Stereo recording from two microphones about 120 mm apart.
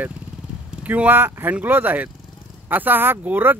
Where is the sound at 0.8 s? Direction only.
15° right (ahead or behind).